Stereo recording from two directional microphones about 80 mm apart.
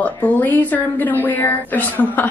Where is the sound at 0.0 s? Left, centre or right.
Left.